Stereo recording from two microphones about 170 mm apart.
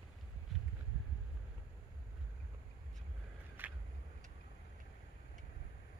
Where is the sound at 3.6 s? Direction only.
10° right (ahead or behind).